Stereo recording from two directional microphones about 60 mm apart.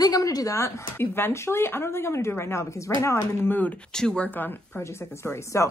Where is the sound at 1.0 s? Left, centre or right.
Left.